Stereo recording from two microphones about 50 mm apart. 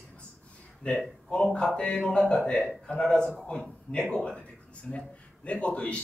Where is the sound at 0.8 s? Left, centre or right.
Left.